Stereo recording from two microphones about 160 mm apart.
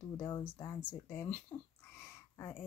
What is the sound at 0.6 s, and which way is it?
Speech, 10° left (ahead or behind).